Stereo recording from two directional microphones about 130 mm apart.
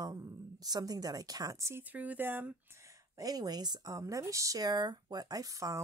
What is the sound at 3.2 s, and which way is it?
Speech, 30° right (ahead or behind).